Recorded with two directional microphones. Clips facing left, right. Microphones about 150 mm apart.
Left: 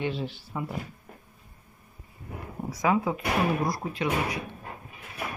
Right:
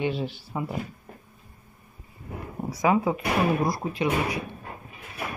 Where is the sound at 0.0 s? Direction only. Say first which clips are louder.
Right 3 dB; 15° right (ahead or behind).